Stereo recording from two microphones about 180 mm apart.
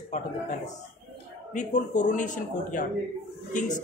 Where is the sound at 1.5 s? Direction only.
45° left (ahead or behind).